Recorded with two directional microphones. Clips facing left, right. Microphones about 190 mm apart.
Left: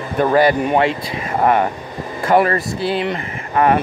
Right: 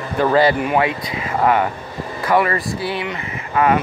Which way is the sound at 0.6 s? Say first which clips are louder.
Left 2 dB; 25° left (ahead or behind).